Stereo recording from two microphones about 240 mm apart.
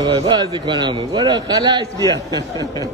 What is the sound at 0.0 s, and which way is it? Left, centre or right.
A man's voice, right.